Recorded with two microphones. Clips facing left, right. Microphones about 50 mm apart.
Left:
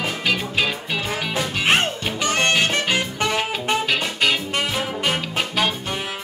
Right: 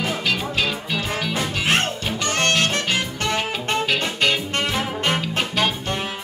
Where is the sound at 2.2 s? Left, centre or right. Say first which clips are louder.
Left 1 dB; centre.